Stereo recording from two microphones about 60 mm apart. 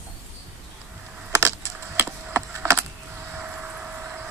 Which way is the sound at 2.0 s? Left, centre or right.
Right.